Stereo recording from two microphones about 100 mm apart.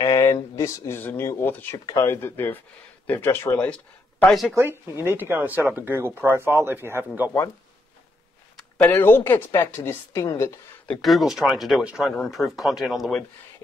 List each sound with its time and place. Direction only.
0.0 s a sound: 30° left (ahead or behind)
1.5 s speech: 20° left (ahead or behind)
1.9 s speech: 30° left (ahead or behind)
3.5 s speech: 10° left (ahead or behind)
5.0 s speech: 20° right (ahead or behind)
8.5 s a sound: 10° left (ahead or behind)
8.9 s speech: 20° left (ahead or behind)
10.9 s speech: centre (ahead or behind)